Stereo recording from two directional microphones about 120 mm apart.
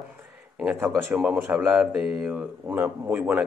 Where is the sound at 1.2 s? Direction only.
10° right (ahead or behind).